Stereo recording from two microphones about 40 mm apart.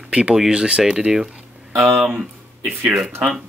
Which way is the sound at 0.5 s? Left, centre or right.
Right.